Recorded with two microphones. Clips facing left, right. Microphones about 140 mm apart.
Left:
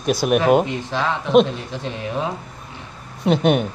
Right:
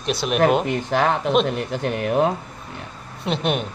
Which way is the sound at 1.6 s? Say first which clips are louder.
Right 5 dB; 65° right (ahead or behind).